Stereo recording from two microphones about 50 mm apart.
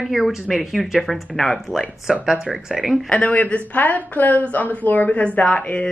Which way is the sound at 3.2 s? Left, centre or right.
Left.